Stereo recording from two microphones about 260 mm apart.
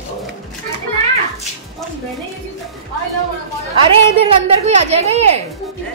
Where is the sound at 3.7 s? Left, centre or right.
Right.